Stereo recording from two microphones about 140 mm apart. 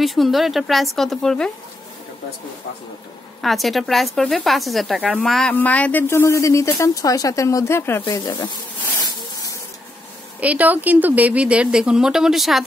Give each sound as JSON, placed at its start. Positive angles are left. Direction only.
{"t": 0.0, "sound": "speech", "side_deg": 0}
{"t": 3.4, "sound": "speech", "side_deg": 0}
{"t": 5.5, "sound": "speech", "side_deg": 10}
{"t": 8.1, "sound": "speech", "side_deg": 30}
{"t": 10.4, "sound": "speech", "side_deg": -10}